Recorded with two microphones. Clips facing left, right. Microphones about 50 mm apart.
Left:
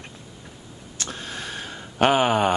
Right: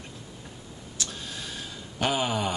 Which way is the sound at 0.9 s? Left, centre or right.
Left.